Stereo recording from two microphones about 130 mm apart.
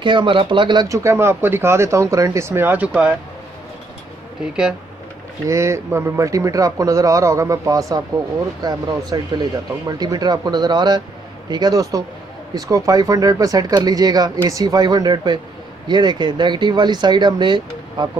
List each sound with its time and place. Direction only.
0.0 s speech: 40° right (ahead or behind)
0.8 s speech: 25° right (ahead or behind)
5.5 s speech: 20° right (ahead or behind)